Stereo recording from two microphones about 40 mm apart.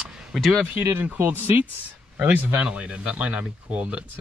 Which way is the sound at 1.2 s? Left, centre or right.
Right.